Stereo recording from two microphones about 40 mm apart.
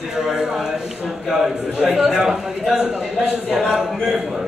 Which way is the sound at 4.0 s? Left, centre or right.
Centre.